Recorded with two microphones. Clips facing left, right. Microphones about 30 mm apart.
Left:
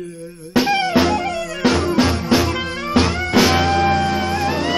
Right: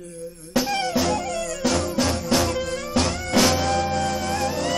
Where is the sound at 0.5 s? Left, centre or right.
Left.